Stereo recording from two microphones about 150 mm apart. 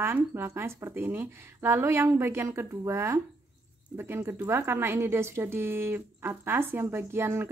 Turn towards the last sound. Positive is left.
turn(degrees=-15)  # may be behind; listen again after turning